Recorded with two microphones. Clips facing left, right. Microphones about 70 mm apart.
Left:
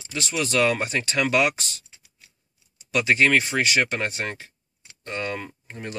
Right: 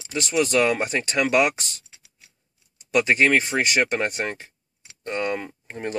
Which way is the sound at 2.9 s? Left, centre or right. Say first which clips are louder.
Right 1 dB; right.